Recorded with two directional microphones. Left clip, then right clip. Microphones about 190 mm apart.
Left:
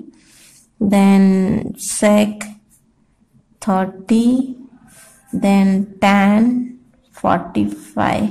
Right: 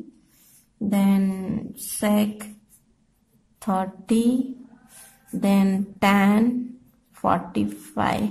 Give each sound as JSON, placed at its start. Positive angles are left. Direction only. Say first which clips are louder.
{"t": 0.7, "sound": "speech", "louder": "left 10 dB", "side_deg": 20}
{"t": 3.6, "sound": "speech", "louder": "left 7 dB", "side_deg": 15}
{"t": 5.4, "sound": "speech", "louder": "left 6 dB", "side_deg": 10}